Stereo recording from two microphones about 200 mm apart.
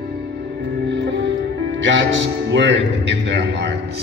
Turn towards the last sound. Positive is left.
turn(degrees=-60)  # may be behind; listen again after turning